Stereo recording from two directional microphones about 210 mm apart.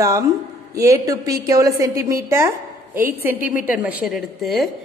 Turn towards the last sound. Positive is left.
turn(degrees=0)  # may be behind; listen again after turning